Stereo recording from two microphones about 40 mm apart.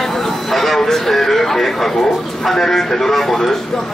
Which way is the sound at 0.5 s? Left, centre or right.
Centre.